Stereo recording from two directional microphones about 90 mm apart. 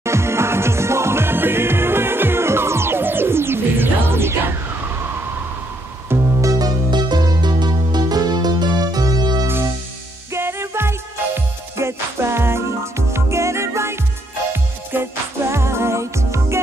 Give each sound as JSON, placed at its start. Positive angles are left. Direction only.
{"t": 0.0, "sound": "music", "side_deg": -30}
{"t": 6.0, "sound": "music", "side_deg": -40}
{"t": 10.3, "sound": "music", "side_deg": -30}